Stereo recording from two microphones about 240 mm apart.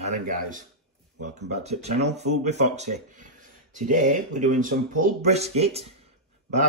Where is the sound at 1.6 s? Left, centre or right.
Right.